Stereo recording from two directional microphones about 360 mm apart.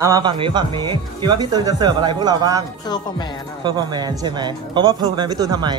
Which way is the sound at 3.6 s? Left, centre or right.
Centre.